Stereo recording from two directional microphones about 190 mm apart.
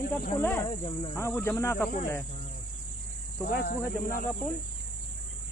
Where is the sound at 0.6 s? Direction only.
25° left (ahead or behind).